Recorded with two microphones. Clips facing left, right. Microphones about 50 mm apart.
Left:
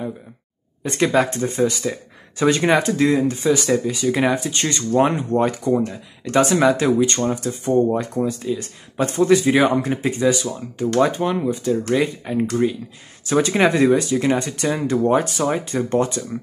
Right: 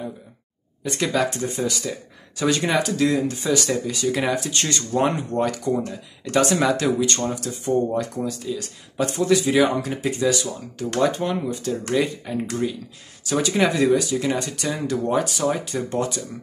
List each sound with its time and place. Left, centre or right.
0.8 s speech: left
6.5 s speech: centre
13.3 s speech: left
14.1 s speech: left
14.4 s speech: left